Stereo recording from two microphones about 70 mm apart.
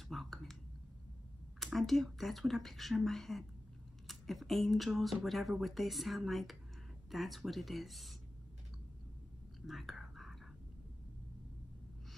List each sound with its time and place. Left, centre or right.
0.1 s a sound: centre
1.6 s speech: centre
9.7 s whispering: centre